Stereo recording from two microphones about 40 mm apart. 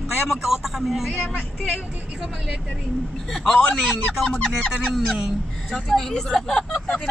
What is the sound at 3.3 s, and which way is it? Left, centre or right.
Speech, centre.